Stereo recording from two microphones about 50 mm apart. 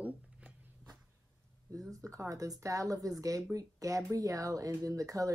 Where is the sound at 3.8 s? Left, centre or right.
Right.